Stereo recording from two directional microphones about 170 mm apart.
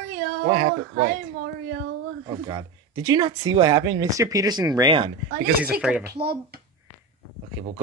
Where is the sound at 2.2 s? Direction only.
25° right (ahead or behind).